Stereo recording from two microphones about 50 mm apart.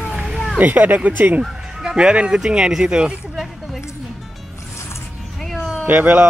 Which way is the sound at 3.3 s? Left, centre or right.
Centre.